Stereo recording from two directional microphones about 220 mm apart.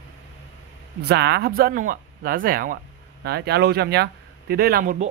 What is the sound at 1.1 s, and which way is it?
Speech, 50° right (ahead or behind).